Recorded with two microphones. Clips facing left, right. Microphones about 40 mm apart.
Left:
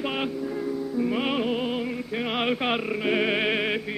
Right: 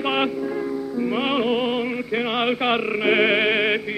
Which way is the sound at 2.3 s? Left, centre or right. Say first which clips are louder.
Right 3 dB; centre.